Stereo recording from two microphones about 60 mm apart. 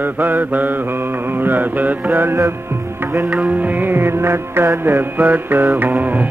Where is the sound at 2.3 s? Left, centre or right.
Right.